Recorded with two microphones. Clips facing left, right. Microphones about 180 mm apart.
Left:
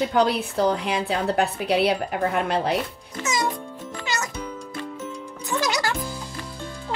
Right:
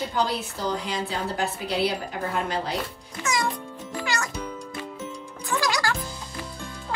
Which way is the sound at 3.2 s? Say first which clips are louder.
Left 1 dB; 10° right (ahead or behind).